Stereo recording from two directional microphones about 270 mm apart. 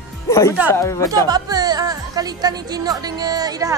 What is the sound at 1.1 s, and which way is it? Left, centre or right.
A woman's voice, centre.